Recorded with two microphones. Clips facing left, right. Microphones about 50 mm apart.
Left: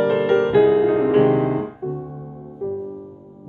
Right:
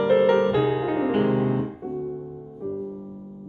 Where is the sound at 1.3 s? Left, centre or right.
Left.